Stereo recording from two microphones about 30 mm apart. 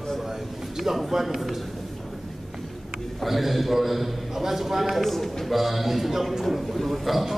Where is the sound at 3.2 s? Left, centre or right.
Centre.